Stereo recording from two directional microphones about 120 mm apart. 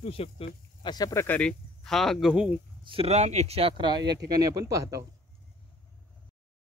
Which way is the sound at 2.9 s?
55° right (ahead or behind).